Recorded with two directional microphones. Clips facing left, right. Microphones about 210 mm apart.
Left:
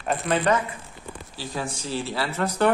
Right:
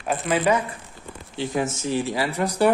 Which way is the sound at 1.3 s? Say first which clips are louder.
Right 7 dB; 20° right (ahead or behind).